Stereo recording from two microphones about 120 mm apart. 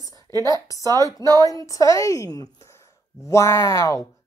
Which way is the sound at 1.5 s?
30° left (ahead or behind).